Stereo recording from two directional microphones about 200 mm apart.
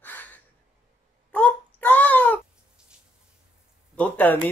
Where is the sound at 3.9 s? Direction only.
10° left (ahead or behind).